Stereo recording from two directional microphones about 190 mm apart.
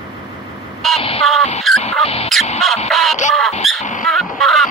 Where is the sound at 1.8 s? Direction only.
35° left (ahead or behind).